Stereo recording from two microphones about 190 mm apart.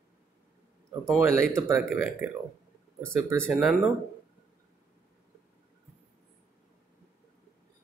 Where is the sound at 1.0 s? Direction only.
15° right (ahead or behind).